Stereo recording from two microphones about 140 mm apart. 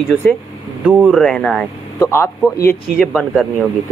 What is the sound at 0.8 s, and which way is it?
Speech, 10° right (ahead or behind).